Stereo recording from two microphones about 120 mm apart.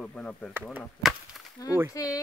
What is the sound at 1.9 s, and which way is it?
Speech, 30° left (ahead or behind).